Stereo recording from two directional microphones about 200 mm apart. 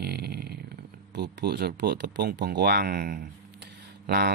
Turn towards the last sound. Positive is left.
turn(degrees=-50)  # may be behind; listen again after turning